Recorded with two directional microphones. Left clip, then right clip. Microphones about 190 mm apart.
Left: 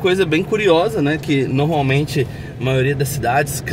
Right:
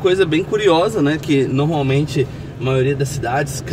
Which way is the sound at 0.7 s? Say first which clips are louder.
Even; centre (ahead or behind).